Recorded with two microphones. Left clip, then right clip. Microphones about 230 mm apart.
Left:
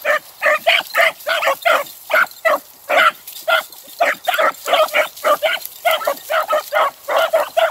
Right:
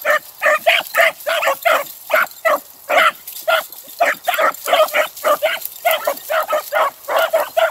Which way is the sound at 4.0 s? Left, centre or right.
Centre.